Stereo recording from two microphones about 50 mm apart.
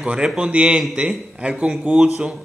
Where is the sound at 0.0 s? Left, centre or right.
Right.